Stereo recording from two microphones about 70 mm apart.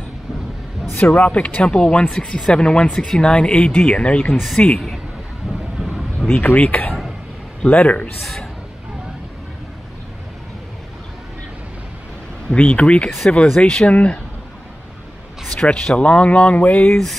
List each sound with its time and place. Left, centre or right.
0.9 s speech: left
4.3 s speech: centre
4.6 s speech: centre
6.2 s speech: left
12.5 s speech: centre
15.6 s speech: centre